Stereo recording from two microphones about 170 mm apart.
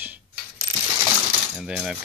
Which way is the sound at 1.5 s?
5° right (ahead or behind).